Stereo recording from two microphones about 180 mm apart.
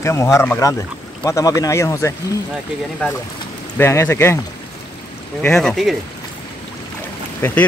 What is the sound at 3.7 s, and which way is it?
Speech, 10° left (ahead or behind).